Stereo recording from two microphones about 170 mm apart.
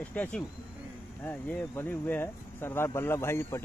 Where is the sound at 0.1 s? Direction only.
10° left (ahead or behind).